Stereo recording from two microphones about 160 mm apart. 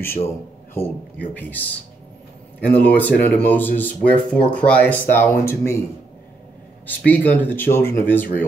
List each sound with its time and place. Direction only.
0.0 s speech: 15° left (ahead or behind)
2.7 s speech: 10° left (ahead or behind)
7.1 s speech: 10° left (ahead or behind)